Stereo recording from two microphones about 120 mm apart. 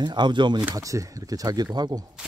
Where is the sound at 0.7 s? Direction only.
25° right (ahead or behind).